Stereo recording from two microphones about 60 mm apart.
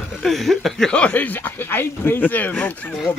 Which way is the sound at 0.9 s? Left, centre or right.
Left.